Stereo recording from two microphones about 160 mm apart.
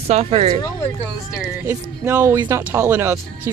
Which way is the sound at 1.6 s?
15° right (ahead or behind).